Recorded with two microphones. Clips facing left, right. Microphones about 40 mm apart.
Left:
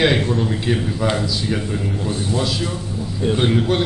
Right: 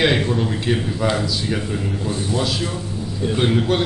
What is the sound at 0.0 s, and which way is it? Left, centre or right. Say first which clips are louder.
Speech: left 1 dB; centre.